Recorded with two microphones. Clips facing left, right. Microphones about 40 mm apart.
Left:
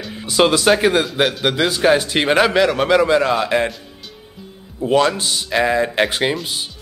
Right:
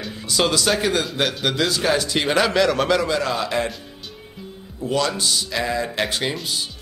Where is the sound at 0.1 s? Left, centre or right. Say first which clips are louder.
Left 6 dB; left.